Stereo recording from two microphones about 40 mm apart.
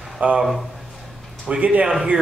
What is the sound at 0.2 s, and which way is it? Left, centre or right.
Speech, right.